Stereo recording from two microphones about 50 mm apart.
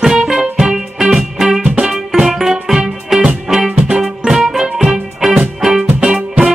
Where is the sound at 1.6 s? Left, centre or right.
Centre.